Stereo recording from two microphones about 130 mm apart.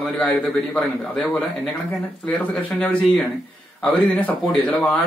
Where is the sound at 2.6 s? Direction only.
10° left (ahead or behind).